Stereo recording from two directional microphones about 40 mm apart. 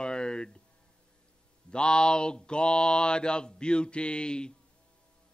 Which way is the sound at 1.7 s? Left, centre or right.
Left.